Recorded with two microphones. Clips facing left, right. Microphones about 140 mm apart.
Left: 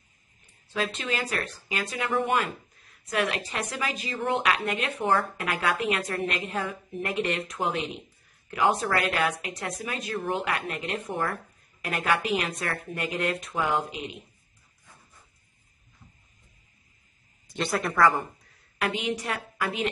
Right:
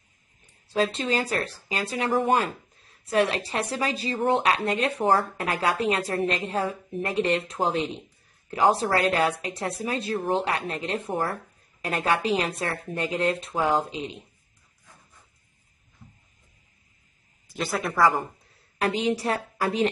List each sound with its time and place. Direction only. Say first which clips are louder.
0.9 s speech: right 4 dB; 35° right (ahead or behind)
17.6 s speech: even; centre (ahead or behind)
18.8 s speech: right 4 dB; 35° right (ahead or behind)